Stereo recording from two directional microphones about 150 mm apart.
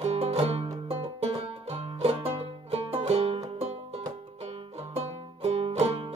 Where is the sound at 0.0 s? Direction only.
45° right (ahead or behind).